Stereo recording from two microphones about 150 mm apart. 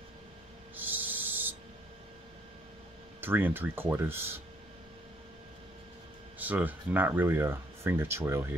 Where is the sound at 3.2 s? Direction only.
15° right (ahead or behind).